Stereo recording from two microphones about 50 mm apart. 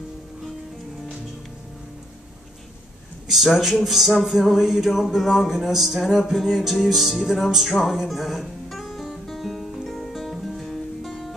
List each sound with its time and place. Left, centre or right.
3.3 s music: centre